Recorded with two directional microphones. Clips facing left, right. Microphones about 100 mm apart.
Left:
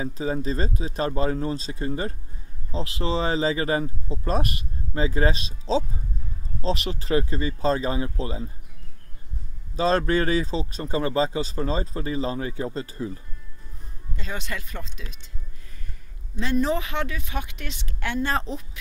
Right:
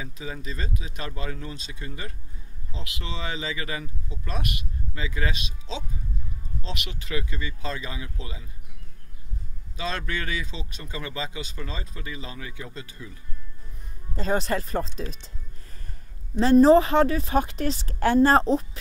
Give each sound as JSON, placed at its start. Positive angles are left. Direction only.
{"t": 0.0, "sound": "speech", "side_deg": 35}
{"t": 9.8, "sound": "speech", "side_deg": 35}
{"t": 14.1, "sound": "a woman's voice", "side_deg": -35}
{"t": 16.3, "sound": "a woman's voice", "side_deg": -35}